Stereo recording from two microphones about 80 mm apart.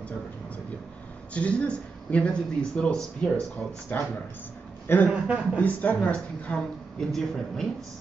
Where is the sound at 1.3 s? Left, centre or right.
Centre.